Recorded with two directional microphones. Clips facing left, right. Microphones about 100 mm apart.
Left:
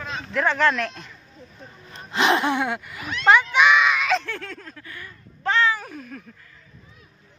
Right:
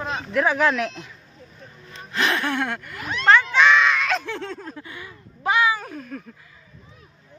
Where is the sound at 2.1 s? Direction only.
25° left (ahead or behind).